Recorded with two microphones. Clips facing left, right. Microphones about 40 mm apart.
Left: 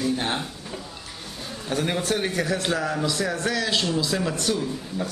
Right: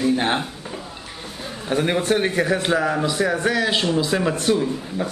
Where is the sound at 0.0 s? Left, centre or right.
Right.